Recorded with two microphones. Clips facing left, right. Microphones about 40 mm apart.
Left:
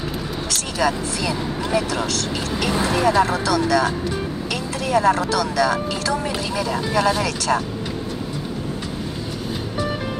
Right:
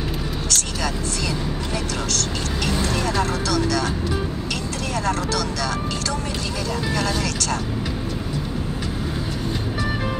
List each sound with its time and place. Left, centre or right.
0.5 s speech: centre
4.9 s speech: centre